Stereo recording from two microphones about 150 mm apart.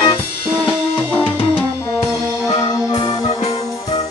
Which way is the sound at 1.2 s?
40° left (ahead or behind).